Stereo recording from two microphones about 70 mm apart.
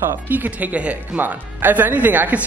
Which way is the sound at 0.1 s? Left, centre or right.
Right.